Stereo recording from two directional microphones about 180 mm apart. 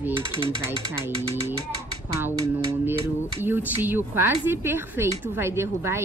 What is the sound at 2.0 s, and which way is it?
A woman's voice, 15° right (ahead or behind).